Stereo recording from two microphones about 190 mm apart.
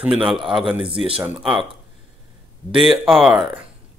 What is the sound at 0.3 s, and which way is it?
Speech, centre (ahead or behind).